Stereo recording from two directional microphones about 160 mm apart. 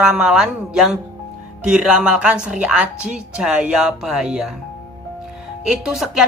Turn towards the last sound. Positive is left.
turn(degrees=0)  # may be behind; listen again after turning